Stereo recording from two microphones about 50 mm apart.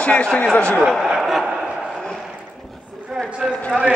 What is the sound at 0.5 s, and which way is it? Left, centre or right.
Speech, left.